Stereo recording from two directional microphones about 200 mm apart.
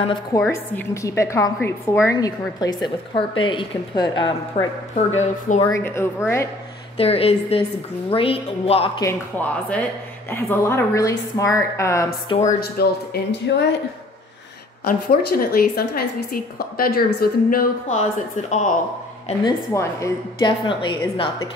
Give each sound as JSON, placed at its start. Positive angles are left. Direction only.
{"t": 0.0, "sound": "a woman's voice", "side_deg": 25}
{"t": 0.5, "sound": "a woman's voice", "side_deg": 15}
{"t": 4.9, "sound": "speech", "side_deg": 35}
{"t": 5.6, "sound": "a woman's voice", "side_deg": 15}
{"t": 7.0, "sound": "a woman's voice", "side_deg": 30}
{"t": 9.0, "sound": "a woman's voice", "side_deg": 10}
{"t": 12.4, "sound": "a woman's voice", "side_deg": 45}
{"t": 14.9, "sound": "a woman's voice", "side_deg": 50}
{"t": 19.7, "sound": "a woman's voice", "side_deg": 15}